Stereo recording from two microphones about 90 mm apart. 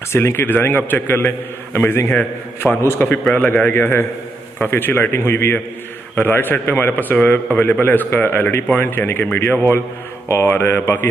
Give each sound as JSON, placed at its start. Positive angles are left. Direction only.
{"t": 0.1, "sound": "a man's voice", "side_deg": 25}